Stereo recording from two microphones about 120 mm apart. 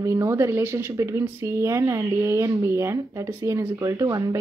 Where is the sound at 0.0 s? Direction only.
25° right (ahead or behind).